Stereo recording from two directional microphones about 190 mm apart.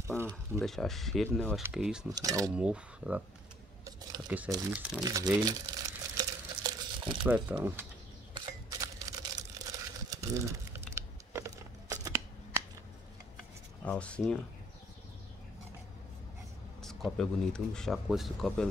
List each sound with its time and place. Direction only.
0.0 s speech: 15° right (ahead or behind)
0.3 s speech: centre (ahead or behind)
2.0 s speech: 20° right (ahead or behind)
2.5 s speech: 5° right (ahead or behind)
5.0 s speech: 20° right (ahead or behind)
5.4 s crumpling: 20° right (ahead or behind)
7.2 s speech: 10° right (ahead or behind)
8.4 s a sound: 20° right (ahead or behind)
13.8 s speech: 5° left (ahead or behind)
16.8 s speech: centre (ahead or behind)